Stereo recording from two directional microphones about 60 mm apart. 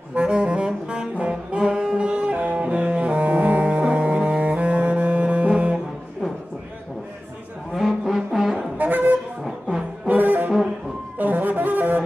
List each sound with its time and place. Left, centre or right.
0.1 s saxophone: centre
7.7 s music: centre
8.7 s saxophone: right
9.4 s music: centre
10.0 s brass instrument: right
11.1 s wind instrument: right